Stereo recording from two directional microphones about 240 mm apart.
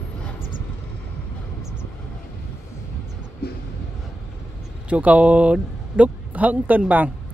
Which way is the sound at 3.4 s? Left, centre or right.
Left.